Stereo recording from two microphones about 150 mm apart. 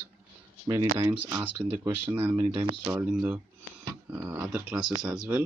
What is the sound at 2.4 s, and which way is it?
Speech, 35° right (ahead or behind).